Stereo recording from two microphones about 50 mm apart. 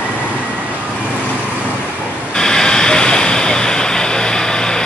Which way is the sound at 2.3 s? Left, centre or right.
Centre.